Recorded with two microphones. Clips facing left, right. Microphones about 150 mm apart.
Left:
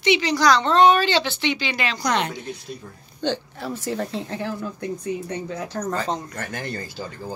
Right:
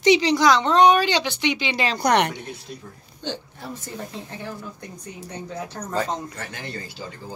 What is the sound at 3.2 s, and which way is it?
A woman's voice, 85° left.